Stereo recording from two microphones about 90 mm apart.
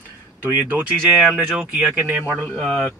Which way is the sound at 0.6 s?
20° right (ahead or behind).